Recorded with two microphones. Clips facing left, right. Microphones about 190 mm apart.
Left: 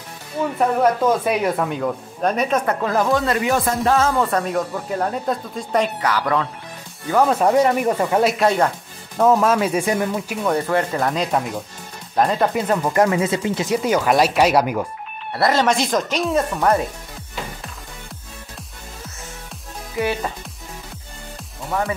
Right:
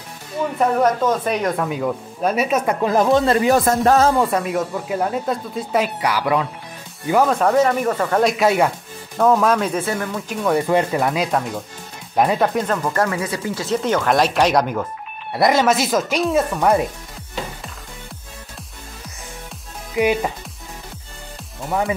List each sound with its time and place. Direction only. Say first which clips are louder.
1.0 s speech: left 1 dB; 10° left (ahead or behind)
1.7 s speech: right 1 dB; 5° right (ahead or behind); by 4.1 s 45° right (ahead or behind)
4.2 s speech: right 1 dB; 10° right (ahead or behind)
7.2 s speech: even; 10° left (ahead or behind)
8.5 s speech: right 1 dB; 5° right (ahead or behind)
9.2 s speech: even; 5° left (ahead or behind)
10.5 s speech: right 3 dB; 15° right (ahead or behind)
12.5 s speech: left 2 dB; 10° left (ahead or behind)
13.7 s speech: even; 10° left (ahead or behind)
15.3 s speech: right 2 dB; 15° right (ahead or behind)
15.6 s speech: right 1 dB; 5° right (ahead or behind)
20.0 s speech: right 4 dB; 15° right (ahead or behind)
21.6 s speech: right 2 dB; 15° right (ahead or behind)